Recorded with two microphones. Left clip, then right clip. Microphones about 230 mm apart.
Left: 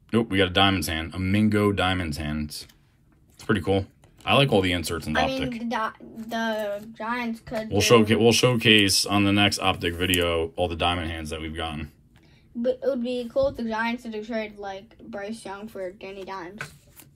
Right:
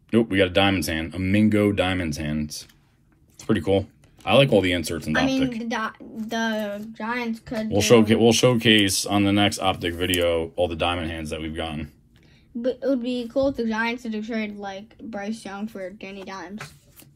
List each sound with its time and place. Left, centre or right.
0.1 s speech: centre
3.7 s speech: centre
5.6 s speech: right
7.7 s speech: centre
12.6 s a woman's voice: right